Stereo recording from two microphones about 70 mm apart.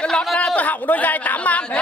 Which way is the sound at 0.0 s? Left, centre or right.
Centre.